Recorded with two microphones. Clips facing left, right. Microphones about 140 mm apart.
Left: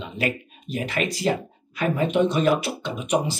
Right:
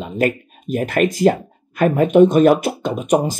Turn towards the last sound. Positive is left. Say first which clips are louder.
# right 6 dB
turn(degrees=-45)  # may be behind; listen again after turning